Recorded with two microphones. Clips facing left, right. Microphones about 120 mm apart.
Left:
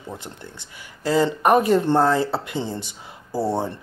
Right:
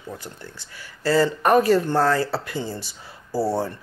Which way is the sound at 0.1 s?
20° left (ahead or behind).